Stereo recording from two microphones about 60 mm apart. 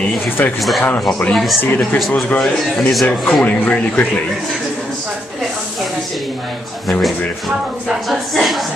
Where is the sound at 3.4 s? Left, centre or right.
Left.